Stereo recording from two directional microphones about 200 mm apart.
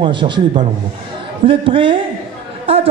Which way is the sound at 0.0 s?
25° right (ahead or behind).